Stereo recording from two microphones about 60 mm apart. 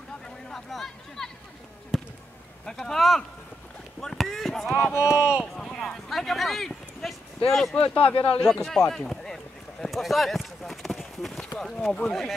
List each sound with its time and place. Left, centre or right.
0.5 s speech: centre
1.9 s basketball bounce: centre
2.6 s speech: centre
5.0 s speech: centre
5.4 s speech: centre
7.7 s speech: left
8.6 s a sound: centre